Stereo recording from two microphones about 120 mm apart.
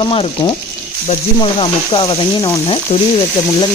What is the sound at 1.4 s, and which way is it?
Speech, 45° left (ahead or behind).